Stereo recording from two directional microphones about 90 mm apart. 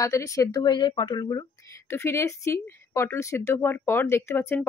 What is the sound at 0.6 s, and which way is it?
Speech, 55° left (ahead or behind).